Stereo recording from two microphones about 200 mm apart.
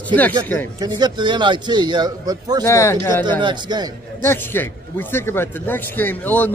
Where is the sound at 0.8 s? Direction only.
20° right (ahead or behind).